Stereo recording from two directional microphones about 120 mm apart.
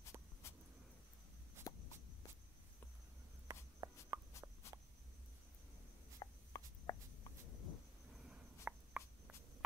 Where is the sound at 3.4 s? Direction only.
25° right (ahead or behind).